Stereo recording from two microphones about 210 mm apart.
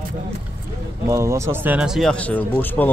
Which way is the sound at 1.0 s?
15° right (ahead or behind).